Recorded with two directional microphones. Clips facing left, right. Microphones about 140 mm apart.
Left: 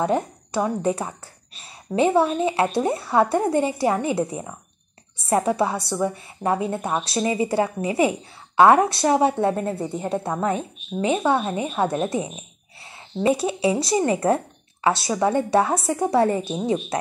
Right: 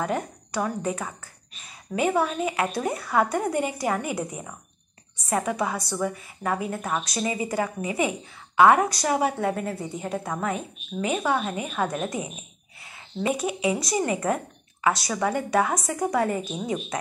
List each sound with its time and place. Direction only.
0.0 s a woman's voice: 30° left (ahead or behind)